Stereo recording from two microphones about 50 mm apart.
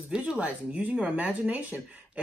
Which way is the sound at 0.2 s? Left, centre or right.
Right.